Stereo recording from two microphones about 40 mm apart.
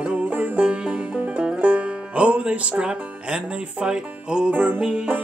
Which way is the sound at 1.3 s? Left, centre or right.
Right.